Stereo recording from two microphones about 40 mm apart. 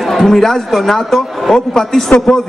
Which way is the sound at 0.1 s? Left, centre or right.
Centre.